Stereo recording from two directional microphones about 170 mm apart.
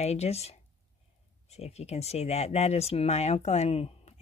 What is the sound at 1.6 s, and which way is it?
Speech, 40° left (ahead or behind).